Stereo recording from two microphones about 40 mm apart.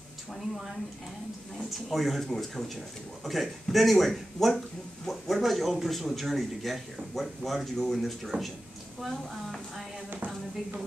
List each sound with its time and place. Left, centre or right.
1.7 s speech: centre
8.3 s speech: right
9.1 s a woman's voice: centre